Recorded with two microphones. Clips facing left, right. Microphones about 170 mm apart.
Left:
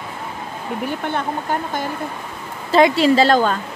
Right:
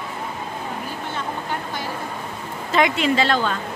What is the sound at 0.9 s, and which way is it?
Speech, 60° left (ahead or behind).